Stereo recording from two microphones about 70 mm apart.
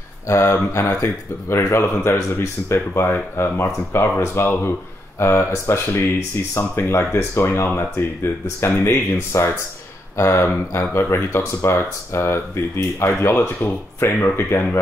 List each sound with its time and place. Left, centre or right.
0.3 s speech: left